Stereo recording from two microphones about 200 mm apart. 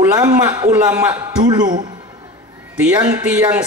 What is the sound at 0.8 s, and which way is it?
Speech, 5° right (ahead or behind).